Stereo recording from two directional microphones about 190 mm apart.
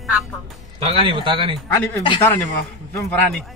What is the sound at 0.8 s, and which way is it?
Speech, 25° right (ahead or behind).